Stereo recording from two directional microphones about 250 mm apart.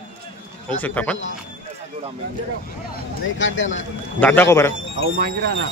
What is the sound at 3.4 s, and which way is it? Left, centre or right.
Speech, left.